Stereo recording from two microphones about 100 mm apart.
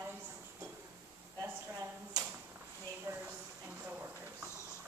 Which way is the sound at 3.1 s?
25° right (ahead or behind).